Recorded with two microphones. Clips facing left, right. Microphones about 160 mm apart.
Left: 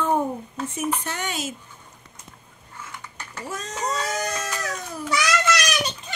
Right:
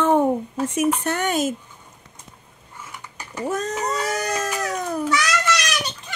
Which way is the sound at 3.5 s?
55° right (ahead or behind).